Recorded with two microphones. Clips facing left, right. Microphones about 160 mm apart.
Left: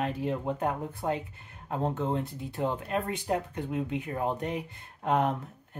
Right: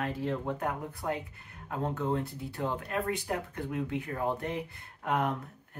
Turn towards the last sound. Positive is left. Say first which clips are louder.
# left 4 dB
turn(degrees=25)  # may be behind; listen again after turning